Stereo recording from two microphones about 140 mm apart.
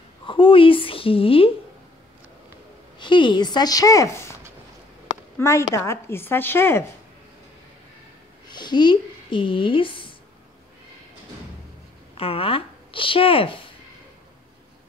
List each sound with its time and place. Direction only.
0.3 s a woman's voice: 40° left (ahead or behind)
3.0 s a woman's voice: 35° left (ahead or behind)
5.4 s a woman's voice: 20° left (ahead or behind)
8.5 s speech: 30° left (ahead or behind)
12.2 s speech: 40° left (ahead or behind)